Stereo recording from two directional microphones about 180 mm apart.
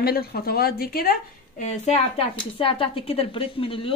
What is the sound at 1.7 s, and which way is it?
A woman's voice, 40° left (ahead or behind).